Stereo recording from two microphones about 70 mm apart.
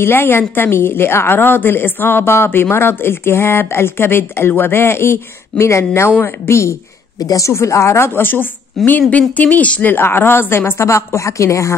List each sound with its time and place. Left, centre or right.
0.0 s a woman's voice: left
7.2 s a woman's voice: left
8.8 s speech: centre
9.4 s a woman's voice: left